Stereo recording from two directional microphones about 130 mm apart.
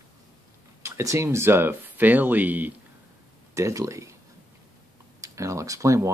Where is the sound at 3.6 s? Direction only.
25° right (ahead or behind).